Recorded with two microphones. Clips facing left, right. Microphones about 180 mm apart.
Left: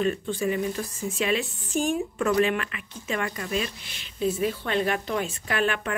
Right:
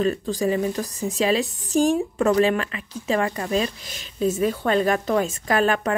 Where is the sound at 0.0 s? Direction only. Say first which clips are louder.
Right 3 dB; 35° right (ahead or behind).